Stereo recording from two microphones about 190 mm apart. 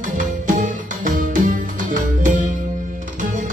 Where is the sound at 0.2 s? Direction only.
45° right (ahead or behind).